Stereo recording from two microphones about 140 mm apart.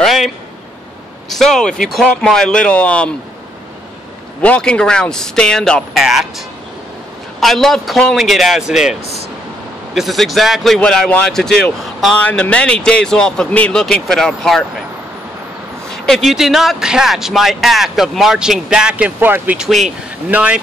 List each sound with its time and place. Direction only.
0.0 s a sound: centre (ahead or behind)
1.3 s speech: 5° left (ahead or behind)
4.4 s speech: 10° left (ahead or behind)
7.3 s speech: centre (ahead or behind)
9.9 s speech: centre (ahead or behind)
15.9 s speech: centre (ahead or behind)